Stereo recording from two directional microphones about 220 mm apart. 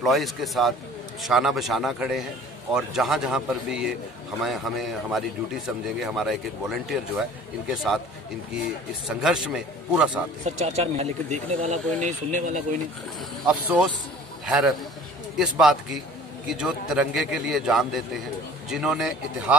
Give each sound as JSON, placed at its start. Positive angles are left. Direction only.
{"t": 0.0, "sound": "speech", "side_deg": 0}
{"t": 9.0, "sound": "speech", "side_deg": 0}
{"t": 10.4, "sound": "speech", "side_deg": -30}
{"t": 13.5, "sound": "speech", "side_deg": -5}